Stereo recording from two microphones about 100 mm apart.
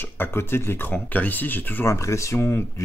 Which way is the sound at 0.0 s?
25° left (ahead or behind).